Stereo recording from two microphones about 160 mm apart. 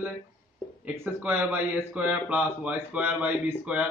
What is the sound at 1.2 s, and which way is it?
Speech, 10° right (ahead or behind).